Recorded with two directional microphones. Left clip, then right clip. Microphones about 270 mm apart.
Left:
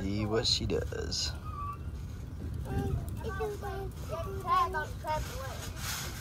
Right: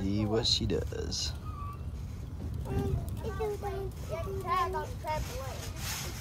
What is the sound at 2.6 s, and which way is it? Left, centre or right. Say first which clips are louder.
Speech: right 2 dB; right.